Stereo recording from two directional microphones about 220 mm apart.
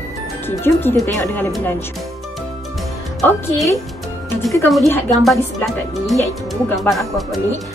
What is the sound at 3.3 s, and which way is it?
Speech, 10° left (ahead or behind).